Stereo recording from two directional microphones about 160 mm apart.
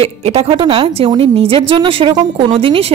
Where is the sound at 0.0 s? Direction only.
40° right (ahead or behind).